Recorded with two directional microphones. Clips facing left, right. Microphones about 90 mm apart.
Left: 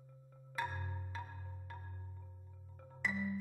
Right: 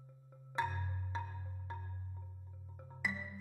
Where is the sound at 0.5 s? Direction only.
25° right (ahead or behind).